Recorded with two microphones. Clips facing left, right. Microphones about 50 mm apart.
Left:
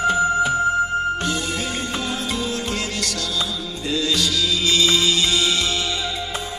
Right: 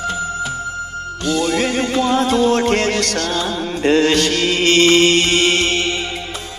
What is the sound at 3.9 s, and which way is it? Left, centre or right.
Mantra, right.